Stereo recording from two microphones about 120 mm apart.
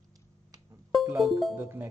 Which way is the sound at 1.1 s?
Centre (ahead or behind).